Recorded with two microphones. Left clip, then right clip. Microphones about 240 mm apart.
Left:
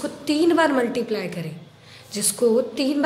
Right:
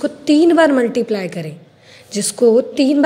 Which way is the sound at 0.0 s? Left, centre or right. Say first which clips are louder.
Right 8 dB; right.